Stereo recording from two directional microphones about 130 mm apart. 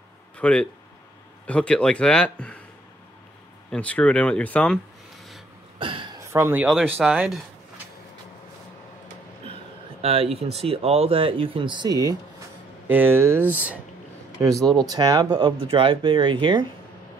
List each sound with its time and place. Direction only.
0.4 s speech: 5° left (ahead or behind)
3.7 s speech: 10° left (ahead or behind)
5.8 s a sound: 40° right (ahead or behind)
6.3 s speech: 20° right (ahead or behind)
6.6 s speech: 5° left (ahead or behind)
10.0 s speech: 50° right (ahead or behind); by 12.2 s 30° right (ahead or behind)
12.8 s speech: 15° right (ahead or behind)
14.8 s speech: 30° right (ahead or behind)